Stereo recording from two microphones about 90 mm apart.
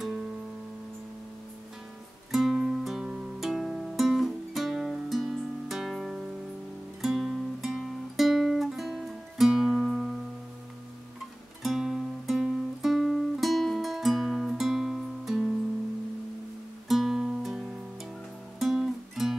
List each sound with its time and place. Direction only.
2.3 s music: 5° right (ahead or behind)
11.6 s music: 5° right (ahead or behind)
16.8 s music: centre (ahead or behind)